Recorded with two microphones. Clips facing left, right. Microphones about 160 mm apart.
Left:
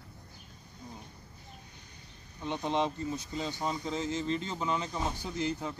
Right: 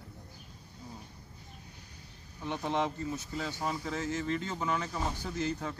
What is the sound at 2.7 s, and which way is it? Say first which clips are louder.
Speech: left 1 dB; 20° left (ahead or behind).